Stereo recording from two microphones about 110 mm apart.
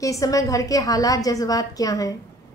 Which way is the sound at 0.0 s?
30° left (ahead or behind).